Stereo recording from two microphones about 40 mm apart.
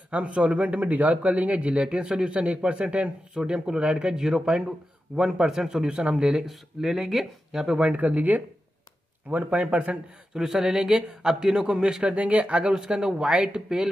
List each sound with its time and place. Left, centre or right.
0.1 s speech: right
3.3 s speech: right
7.8 s speech: right
10.3 s speech: centre
12.2 s speech: right
12.7 s speech: centre